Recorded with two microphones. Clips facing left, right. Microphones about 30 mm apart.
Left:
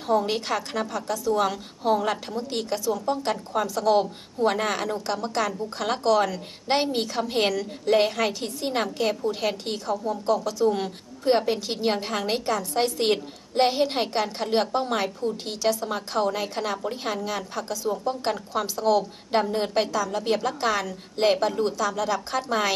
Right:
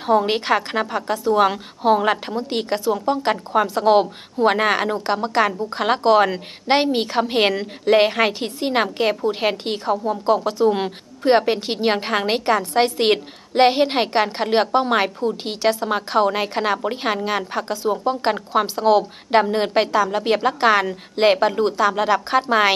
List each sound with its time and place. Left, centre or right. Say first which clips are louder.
0.0 s a woman's voice: right 6 dB; right